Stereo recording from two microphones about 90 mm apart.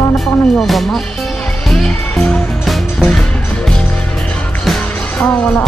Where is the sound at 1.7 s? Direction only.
5° left (ahead or behind).